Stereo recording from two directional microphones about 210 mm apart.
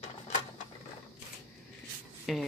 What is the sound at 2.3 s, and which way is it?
Speech, centre (ahead or behind).